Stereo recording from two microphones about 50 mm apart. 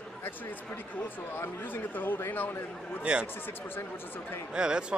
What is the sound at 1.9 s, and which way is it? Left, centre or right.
Speech, left.